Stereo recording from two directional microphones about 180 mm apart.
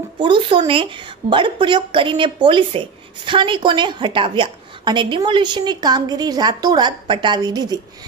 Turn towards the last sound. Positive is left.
turn(degrees=-20)  # may be behind; listen again after turning